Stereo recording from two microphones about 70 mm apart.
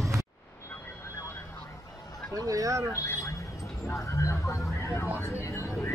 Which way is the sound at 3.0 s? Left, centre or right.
Left.